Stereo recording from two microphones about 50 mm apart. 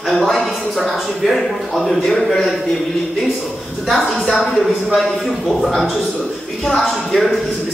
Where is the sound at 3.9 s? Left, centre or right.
Centre.